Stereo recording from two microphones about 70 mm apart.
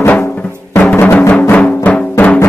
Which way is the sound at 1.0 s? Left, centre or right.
Left.